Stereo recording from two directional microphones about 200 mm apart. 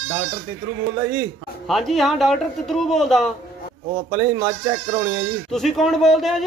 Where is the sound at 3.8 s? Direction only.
20° right (ahead or behind).